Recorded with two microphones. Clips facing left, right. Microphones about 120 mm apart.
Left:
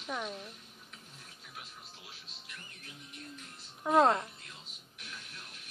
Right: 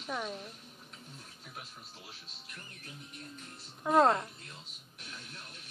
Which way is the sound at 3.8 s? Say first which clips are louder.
Even; centre (ahead or behind).